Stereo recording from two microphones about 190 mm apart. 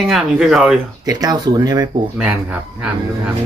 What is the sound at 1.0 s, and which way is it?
Speech, 20° right (ahead or behind).